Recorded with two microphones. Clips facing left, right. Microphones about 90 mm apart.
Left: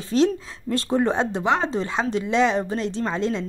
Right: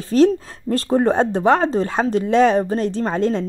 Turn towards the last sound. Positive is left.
turn(degrees=-45)  # may be behind; listen again after turning